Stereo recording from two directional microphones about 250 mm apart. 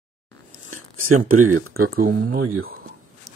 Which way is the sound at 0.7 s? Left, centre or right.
Right.